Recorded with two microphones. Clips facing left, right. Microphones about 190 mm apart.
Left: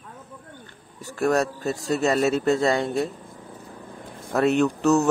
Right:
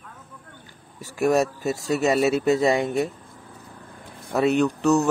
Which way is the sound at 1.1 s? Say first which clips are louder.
Right 2 dB; 10° right (ahead or behind).